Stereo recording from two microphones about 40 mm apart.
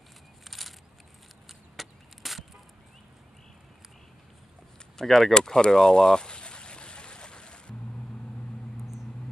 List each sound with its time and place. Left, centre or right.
0.5 s crushing: centre
1.8 s chop: centre
4.9 s speech: centre
5.3 s a sound: centre